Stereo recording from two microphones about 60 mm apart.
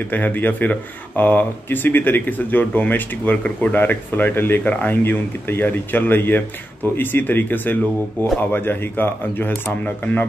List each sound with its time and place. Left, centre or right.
0.1 s speech: left